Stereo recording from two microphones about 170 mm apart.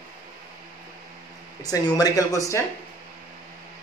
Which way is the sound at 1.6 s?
20° left (ahead or behind).